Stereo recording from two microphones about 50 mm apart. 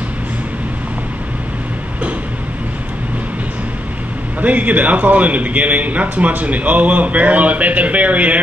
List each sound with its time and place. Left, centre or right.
4.4 s a man's voice: right